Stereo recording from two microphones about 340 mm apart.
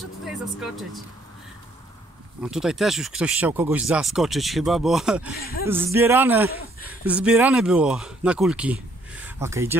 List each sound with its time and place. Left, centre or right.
0.0 s speech: centre
2.4 s speech: centre
5.4 s speech: left
5.7 s a man's voice: centre